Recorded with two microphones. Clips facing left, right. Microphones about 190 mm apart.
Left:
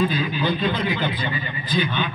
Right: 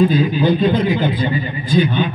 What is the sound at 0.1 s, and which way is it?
A man's voice, 45° right (ahead or behind).